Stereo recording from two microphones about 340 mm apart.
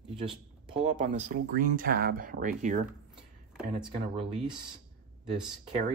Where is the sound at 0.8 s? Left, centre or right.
Centre.